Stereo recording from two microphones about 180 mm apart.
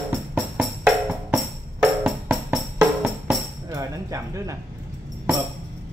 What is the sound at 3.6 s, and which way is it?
Music, 20° right (ahead or behind).